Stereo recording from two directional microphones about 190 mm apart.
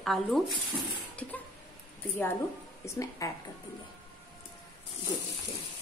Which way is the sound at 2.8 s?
15° left (ahead or behind).